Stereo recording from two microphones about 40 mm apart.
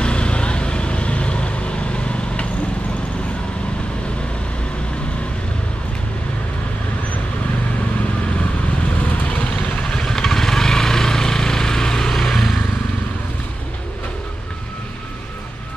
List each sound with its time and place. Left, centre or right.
0.0 s vehicle: left
10.2 s vehicle: centre